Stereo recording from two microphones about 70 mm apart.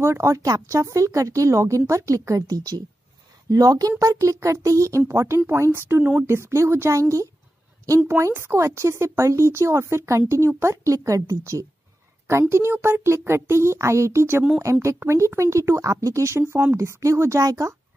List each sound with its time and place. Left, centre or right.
0.0 s a woman's voice: right
4.0 s a child's voice: right